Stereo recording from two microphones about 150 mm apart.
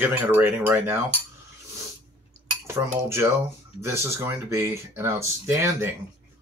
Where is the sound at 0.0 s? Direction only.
15° right (ahead or behind).